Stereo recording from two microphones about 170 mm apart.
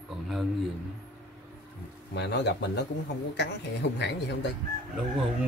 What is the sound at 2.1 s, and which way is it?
Speech, 85° left.